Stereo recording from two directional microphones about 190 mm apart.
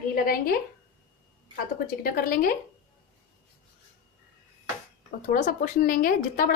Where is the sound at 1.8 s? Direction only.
45° left (ahead or behind).